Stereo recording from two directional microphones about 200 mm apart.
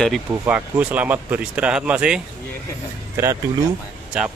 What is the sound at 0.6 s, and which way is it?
Speech, 10° right (ahead or behind).